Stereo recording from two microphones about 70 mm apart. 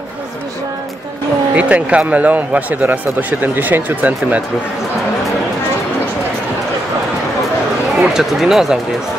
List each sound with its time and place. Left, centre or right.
1.5 s speech: centre
8.0 s speech: centre